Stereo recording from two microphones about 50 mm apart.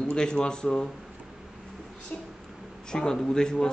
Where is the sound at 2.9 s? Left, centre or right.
Centre.